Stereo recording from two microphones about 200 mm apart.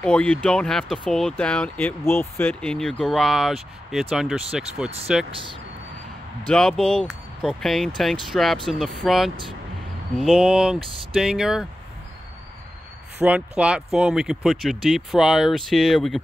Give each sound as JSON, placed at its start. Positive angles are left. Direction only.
{"t": 0.0, "sound": "speech", "side_deg": 5}
{"t": 5.3, "sound": "speech", "side_deg": -25}
{"t": 6.4, "sound": "speech", "side_deg": 5}
{"t": 13.2, "sound": "speech", "side_deg": -5}